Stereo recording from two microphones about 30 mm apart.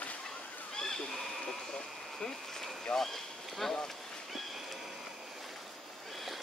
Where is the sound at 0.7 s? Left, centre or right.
Centre.